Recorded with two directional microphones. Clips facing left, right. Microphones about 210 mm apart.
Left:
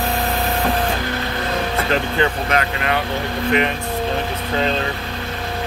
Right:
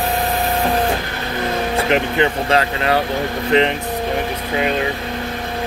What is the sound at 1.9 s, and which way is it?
Speech, 25° right (ahead or behind).